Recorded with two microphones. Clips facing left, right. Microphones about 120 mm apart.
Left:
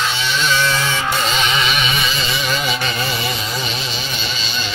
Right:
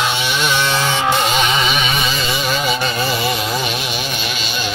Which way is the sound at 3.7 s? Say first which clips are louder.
Right 3 dB; 60° right (ahead or behind).